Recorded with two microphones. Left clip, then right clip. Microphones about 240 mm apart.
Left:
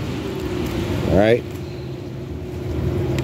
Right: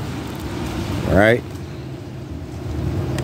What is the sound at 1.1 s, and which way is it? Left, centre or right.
Speech, right.